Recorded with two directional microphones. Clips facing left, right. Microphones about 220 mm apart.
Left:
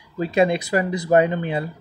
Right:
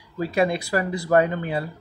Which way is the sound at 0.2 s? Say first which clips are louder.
Left 3 dB; 20° left (ahead or behind).